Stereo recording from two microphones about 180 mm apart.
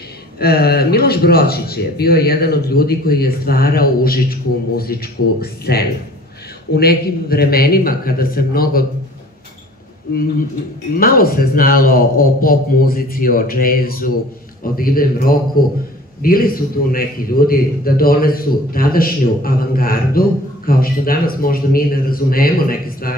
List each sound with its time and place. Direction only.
0.4 s a man's voice: 60° left (ahead or behind)
11.0 s a man's voice: 55° left (ahead or behind)